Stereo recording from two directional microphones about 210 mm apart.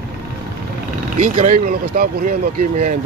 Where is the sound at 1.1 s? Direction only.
35° right (ahead or behind).